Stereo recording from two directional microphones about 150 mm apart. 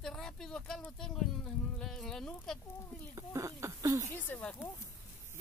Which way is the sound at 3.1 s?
20° right (ahead or behind).